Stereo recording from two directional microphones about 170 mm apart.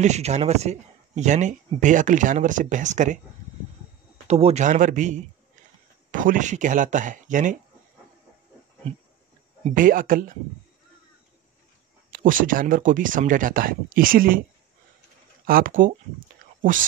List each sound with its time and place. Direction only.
0.0 s speech: 40° right (ahead or behind)
4.3 s speech: 40° right (ahead or behind)
9.7 s speech: 55° right (ahead or behind)
12.1 s speech: 55° right (ahead or behind)
15.4 s speech: 55° right (ahead or behind)